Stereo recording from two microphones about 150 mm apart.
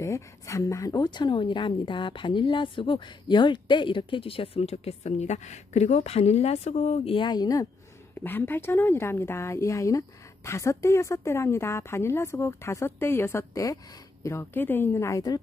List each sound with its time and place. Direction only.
0.0 s speech: 20° left (ahead or behind)
8.2 s a woman's voice: 15° left (ahead or behind)